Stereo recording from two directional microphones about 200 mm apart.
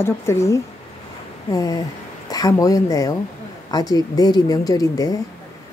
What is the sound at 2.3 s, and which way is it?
A woman's voice, 20° left (ahead or behind).